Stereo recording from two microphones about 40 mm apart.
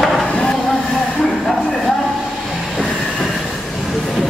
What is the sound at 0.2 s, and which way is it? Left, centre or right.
Chop, left.